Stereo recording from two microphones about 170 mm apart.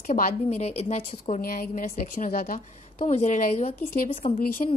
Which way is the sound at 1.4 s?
55° left (ahead or behind).